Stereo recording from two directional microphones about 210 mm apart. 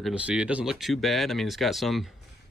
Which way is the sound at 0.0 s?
5° right (ahead or behind).